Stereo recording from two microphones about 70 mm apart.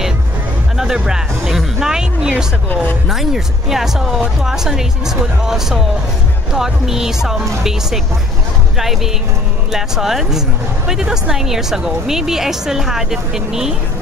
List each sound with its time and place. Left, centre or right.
0.7 s music: centre
3.1 s a woman's voice: centre